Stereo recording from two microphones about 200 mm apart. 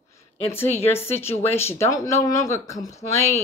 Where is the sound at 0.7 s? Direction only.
10° left (ahead or behind).